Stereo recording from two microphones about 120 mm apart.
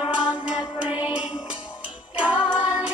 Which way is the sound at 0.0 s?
10° right (ahead or behind).